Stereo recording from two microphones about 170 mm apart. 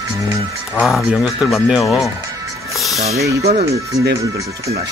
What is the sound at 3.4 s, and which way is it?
Speech, 40° right (ahead or behind).